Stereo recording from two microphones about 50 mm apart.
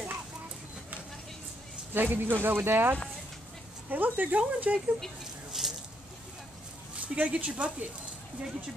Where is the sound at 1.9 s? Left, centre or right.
Right.